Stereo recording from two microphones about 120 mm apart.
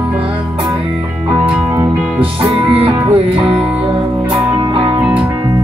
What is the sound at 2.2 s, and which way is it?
Music, 50° right (ahead or behind).